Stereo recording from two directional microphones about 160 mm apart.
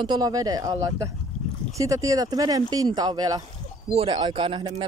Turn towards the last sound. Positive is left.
turn(degrees=-30)  # may be behind; listen again after turning